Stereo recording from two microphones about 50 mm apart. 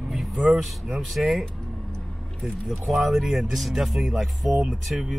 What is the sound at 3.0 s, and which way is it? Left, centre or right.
Speech, centre.